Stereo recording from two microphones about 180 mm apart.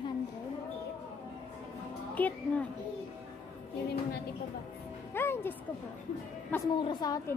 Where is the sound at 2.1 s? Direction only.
10° left (ahead or behind).